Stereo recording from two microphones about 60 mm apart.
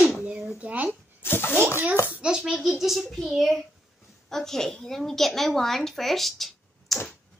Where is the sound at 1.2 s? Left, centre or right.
Left.